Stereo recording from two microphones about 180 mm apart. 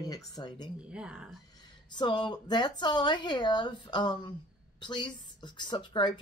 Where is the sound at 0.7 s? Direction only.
5° right (ahead or behind).